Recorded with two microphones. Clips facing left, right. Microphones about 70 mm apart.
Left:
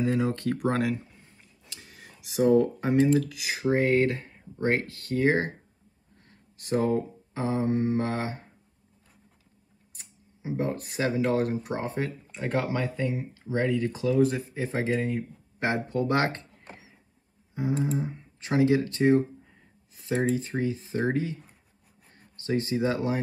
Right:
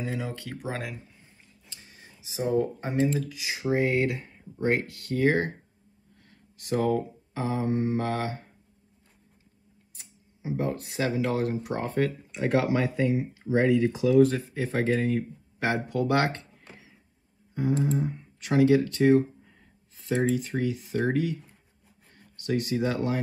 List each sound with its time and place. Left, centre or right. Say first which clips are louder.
0.1 s speech: left 7 dB; left
1.7 s a sound: left 3 dB; left
3.6 s speech: left 2 dB; left
6.2 s a sound: left 1 dB; left
7.8 s speech: even; left
10.4 s speech: even; left
11.7 s speech: right 1 dB; centre
12.3 s speech: right 2 dB; centre
14.1 s speech: right 4 dB; centre
14.5 s speech: right 2 dB; left
14.9 s speech: right 3 dB; centre
15.6 s speech: even; left
17.6 s speech: right 2 dB; centre
22.0 s a sound: right 1 dB; left